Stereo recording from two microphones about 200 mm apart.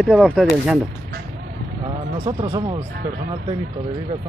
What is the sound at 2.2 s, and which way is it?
Speech, 20° right (ahead or behind).